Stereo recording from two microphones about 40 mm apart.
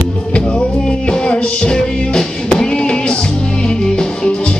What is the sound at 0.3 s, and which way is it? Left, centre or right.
Music, left.